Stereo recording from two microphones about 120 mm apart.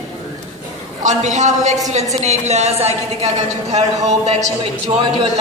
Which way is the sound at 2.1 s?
70° right (ahead or behind).